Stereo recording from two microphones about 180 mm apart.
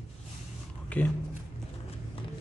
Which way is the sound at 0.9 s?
10° left (ahead or behind).